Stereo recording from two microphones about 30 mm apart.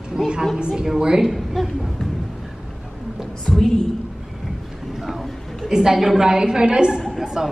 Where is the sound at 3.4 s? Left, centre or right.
Centre.